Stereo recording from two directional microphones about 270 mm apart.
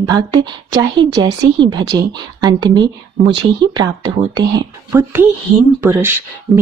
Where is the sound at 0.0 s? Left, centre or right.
Centre.